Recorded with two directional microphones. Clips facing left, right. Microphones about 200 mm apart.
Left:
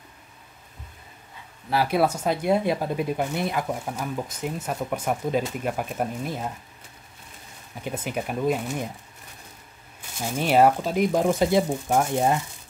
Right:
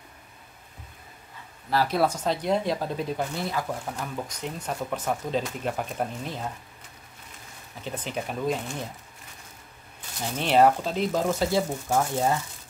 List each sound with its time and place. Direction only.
1.7 s speech: 10° left (ahead or behind)
7.8 s speech: 10° left (ahead or behind)
10.2 s speech: 10° left (ahead or behind)